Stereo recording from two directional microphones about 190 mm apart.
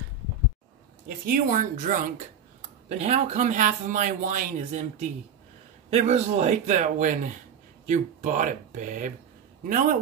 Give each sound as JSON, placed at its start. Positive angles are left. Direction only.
{"t": 1.0, "sound": "a woman's voice", "side_deg": -45}